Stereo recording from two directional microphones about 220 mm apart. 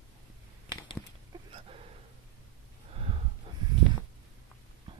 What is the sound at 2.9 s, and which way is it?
Gasp, 25° right (ahead or behind).